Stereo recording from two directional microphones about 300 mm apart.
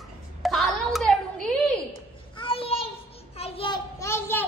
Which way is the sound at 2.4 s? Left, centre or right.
Centre.